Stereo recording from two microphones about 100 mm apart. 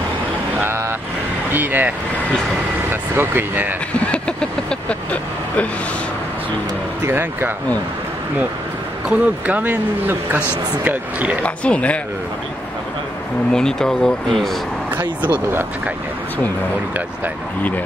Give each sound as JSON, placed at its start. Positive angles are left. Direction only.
{"t": 0.6, "sound": "vehicle", "side_deg": -25}
{"t": 1.5, "sound": "speech", "side_deg": -20}
{"t": 4.1, "sound": "vehicle", "side_deg": 10}
{"t": 7.1, "sound": "speech", "side_deg": -20}
{"t": 9.1, "sound": "speech", "side_deg": -15}
{"t": 11.4, "sound": "vehicle", "side_deg": 10}
{"t": 13.5, "sound": "vehicle", "side_deg": 5}
{"t": 15.0, "sound": "speech", "side_deg": -20}